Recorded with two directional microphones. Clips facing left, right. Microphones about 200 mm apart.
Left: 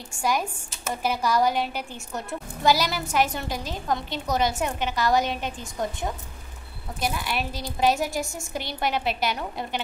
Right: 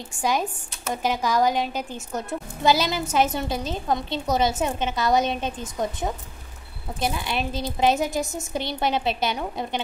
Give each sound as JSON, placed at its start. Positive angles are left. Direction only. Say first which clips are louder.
{"t": 0.2, "sound": "a woman's voice", "louder": "right 1 dB", "side_deg": -20}